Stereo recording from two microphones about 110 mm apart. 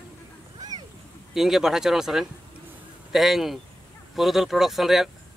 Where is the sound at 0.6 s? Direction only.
35° right (ahead or behind).